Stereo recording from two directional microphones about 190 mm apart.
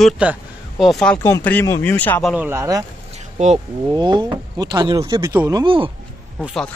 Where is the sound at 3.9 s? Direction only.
25° right (ahead or behind).